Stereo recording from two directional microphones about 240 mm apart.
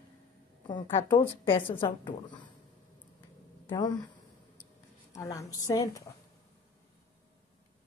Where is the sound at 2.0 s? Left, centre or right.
Centre.